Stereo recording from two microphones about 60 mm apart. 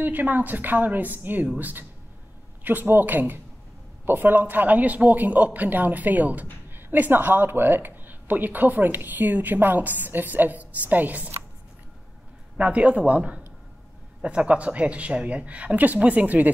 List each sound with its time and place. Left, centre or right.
0.0 s a man's voice: right
12.5 s a man's voice: right